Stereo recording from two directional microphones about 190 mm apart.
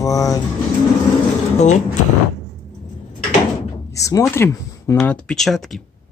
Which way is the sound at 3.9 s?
15° left (ahead or behind).